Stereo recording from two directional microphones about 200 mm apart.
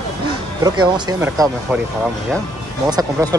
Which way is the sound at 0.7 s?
20° right (ahead or behind).